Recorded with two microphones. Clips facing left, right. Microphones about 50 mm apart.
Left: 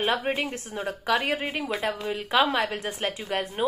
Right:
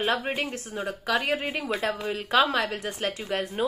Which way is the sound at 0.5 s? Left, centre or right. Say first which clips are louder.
Even; left.